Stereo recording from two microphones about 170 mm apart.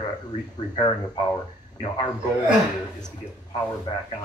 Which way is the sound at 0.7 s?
30° left (ahead or behind).